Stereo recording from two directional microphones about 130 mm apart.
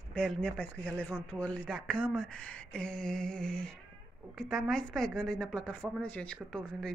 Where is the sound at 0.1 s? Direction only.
5° left (ahead or behind).